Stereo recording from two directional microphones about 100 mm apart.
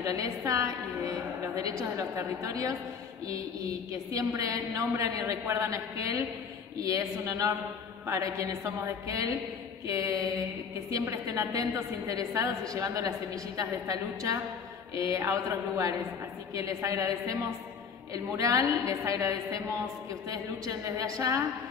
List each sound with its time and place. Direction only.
0.0 s a woman's voice: 35° right (ahead or behind)
3.9 s a woman's voice: 35° right (ahead or behind)
16.5 s a woman's voice: 30° right (ahead or behind)